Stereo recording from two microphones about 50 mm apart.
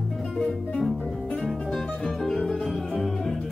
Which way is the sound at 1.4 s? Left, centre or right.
Centre.